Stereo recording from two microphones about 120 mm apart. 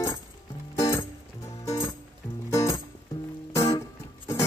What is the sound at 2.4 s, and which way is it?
Music, 25° left (ahead or behind).